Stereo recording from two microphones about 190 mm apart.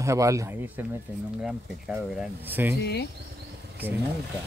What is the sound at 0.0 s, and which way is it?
Speech, 15° right (ahead or behind).